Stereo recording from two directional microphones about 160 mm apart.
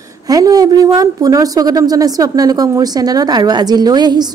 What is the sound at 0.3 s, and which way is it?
A woman's voice, 25° right (ahead or behind).